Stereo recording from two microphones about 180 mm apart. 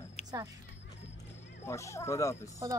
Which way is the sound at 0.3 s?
20° right (ahead or behind).